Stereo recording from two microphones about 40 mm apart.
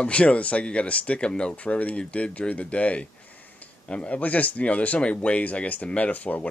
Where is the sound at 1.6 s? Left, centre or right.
Left.